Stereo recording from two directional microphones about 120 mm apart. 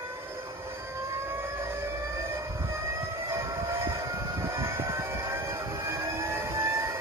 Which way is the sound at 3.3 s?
25° right (ahead or behind).